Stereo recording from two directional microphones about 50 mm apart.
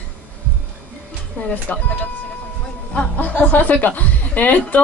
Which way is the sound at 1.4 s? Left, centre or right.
Left.